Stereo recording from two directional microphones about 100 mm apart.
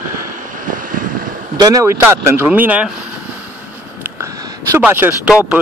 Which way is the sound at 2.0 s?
20° right (ahead or behind).